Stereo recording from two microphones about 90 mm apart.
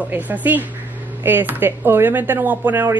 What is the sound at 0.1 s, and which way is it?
Speech, 20° right (ahead or behind).